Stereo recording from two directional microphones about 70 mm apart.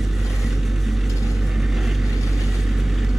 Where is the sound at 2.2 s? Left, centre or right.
Left.